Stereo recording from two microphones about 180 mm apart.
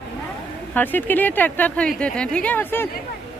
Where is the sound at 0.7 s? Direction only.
10° left (ahead or behind).